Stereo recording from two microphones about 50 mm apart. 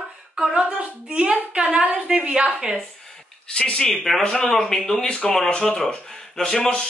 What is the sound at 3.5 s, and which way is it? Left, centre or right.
Speech, centre.